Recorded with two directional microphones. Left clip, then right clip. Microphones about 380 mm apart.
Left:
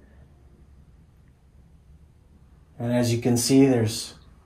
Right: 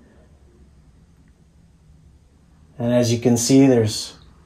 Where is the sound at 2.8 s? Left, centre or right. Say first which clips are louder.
Right 6 dB; right.